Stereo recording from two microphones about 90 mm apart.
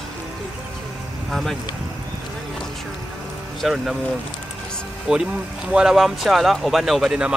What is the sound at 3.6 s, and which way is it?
Speech, 5° right (ahead or behind).